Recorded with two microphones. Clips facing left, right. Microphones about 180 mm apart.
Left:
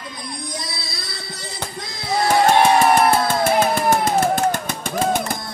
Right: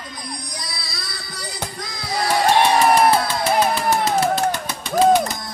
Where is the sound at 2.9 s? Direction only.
50° left (ahead or behind).